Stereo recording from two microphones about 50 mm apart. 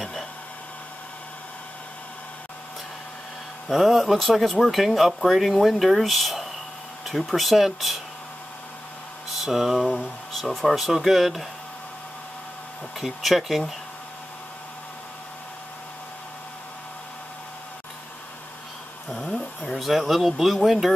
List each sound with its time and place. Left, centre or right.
3.6 s speech: centre
9.3 s speech: centre
13.0 s speech: centre
19.0 s a sound: centre
19.9 s speech: centre